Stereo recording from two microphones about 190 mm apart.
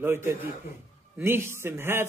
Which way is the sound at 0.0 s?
10° right (ahead or behind).